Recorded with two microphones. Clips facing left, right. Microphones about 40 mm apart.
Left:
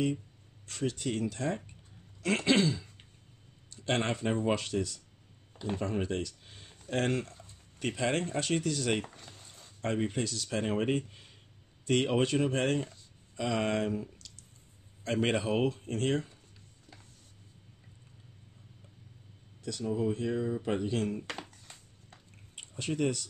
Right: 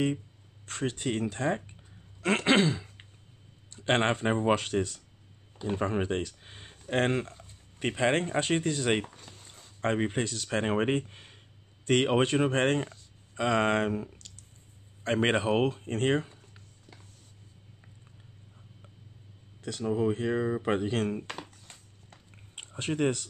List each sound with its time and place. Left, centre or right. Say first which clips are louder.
0.7 s speech: right 2 dB; right
2.2 s throat clearing: right 3 dB; right
3.7 s speech: right 5 dB; right
9.2 s a sound: right 1 dB; centre
9.8 s speech: right 3 dB; right
19.6 s speech: right 3 dB; right
22.6 s speech: right 3 dB; right